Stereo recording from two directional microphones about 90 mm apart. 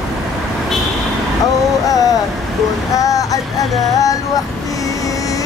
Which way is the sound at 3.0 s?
40° left (ahead or behind).